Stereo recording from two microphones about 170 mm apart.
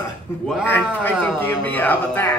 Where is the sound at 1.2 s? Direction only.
10° left (ahead or behind).